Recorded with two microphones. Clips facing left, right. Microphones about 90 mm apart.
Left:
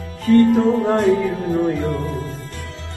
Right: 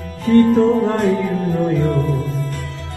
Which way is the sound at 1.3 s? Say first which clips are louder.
Right 1 dB; 40° right (ahead or behind).